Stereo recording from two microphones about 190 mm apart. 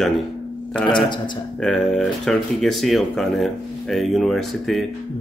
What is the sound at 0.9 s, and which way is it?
Speech, 25° left (ahead or behind).